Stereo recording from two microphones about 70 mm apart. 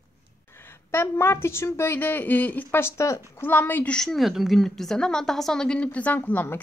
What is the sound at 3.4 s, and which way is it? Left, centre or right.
Speech, left.